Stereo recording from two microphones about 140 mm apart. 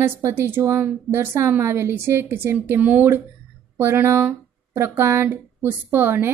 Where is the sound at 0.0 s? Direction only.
20° right (ahead or behind).